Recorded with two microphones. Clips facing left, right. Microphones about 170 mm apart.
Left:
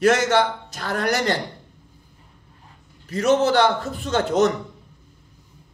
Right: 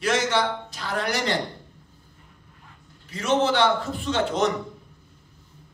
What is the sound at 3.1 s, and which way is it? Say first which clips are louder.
Speech: left 4 dB; 40° left (ahead or behind).